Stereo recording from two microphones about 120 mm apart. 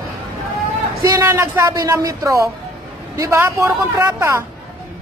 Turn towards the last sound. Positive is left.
turn(degrees=-25)  # may be behind; listen again after turning